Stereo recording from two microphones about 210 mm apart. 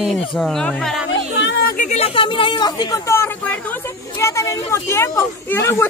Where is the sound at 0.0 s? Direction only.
Centre (ahead or behind).